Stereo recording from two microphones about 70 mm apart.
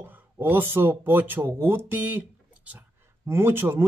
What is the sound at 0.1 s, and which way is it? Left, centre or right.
Speech, right.